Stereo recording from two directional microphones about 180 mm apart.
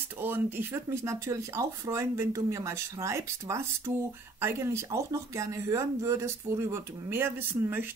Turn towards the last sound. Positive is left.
turn(degrees=-10)  # may be behind; listen again after turning